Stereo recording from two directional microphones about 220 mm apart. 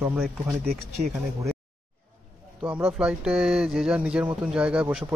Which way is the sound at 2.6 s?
5° right (ahead or behind).